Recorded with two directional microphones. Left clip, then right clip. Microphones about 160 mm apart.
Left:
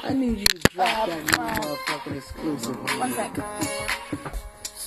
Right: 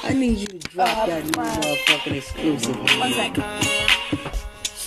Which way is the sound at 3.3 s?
40° right (ahead or behind).